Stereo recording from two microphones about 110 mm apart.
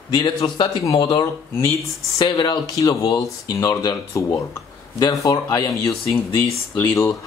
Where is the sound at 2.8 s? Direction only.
30° left (ahead or behind).